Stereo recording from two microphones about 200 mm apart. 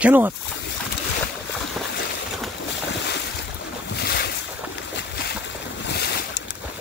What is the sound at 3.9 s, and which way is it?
Boat, 55° left (ahead or behind).